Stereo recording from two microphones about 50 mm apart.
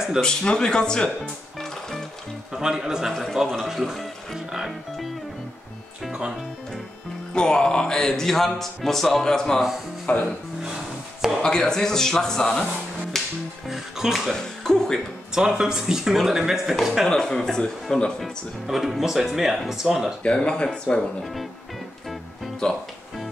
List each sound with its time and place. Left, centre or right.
0.2 s speech: centre
1.6 s music: centre
2.5 s speech: centre
3.1 s speech: centre
7.3 s speech: centre
10.1 s speech: left
11.4 s speech: centre
13.1 s music: centre
13.7 s music: centre
14.3 s music: centre
15.3 s speech: centre
17.4 s speech: centre
18.7 s speech: centre
20.2 s speech: centre